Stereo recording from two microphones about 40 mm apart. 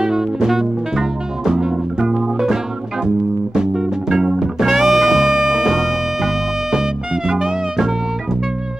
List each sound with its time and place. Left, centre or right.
0.0 s music: centre
4.1 s music: centre